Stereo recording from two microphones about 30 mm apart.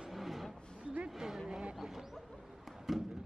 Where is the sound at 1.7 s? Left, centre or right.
Centre.